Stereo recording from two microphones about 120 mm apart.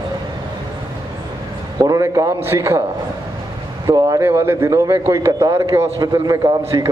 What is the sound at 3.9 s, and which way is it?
Speech, 35° right (ahead or behind).